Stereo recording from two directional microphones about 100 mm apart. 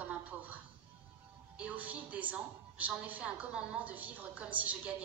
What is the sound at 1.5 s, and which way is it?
A woman's voice, 15° right (ahead or behind).